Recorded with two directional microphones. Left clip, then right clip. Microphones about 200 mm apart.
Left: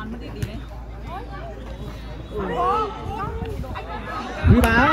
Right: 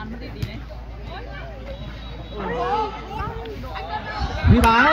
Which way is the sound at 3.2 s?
40° left (ahead or behind).